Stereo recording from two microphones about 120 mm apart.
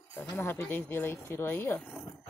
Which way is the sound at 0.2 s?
20° left (ahead or behind).